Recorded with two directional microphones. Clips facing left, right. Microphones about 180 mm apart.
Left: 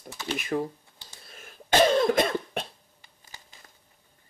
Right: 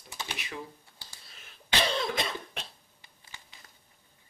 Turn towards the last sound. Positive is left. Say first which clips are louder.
# left 1 dB
turn(degrees=45)  # may be behind; listen again after turning